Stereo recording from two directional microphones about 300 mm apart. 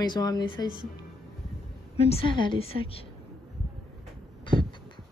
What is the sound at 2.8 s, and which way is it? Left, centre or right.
Speech, right.